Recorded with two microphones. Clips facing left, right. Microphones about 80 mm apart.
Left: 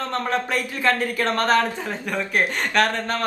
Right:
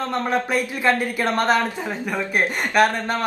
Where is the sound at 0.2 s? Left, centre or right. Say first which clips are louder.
Right 4 dB; centre.